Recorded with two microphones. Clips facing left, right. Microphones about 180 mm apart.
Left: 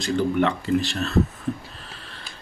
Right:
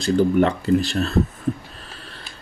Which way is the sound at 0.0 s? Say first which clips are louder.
Right 4 dB; 40° right (ahead or behind).